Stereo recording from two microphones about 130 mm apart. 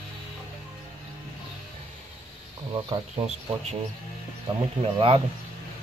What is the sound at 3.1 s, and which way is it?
Speech, 55° right (ahead or behind).